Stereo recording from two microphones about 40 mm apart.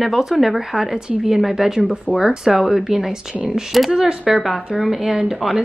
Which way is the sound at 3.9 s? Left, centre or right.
Right.